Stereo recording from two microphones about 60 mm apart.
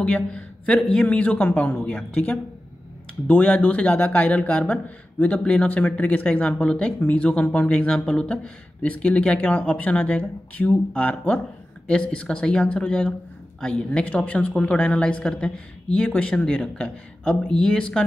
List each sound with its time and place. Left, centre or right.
0.0 s a man's voice: centre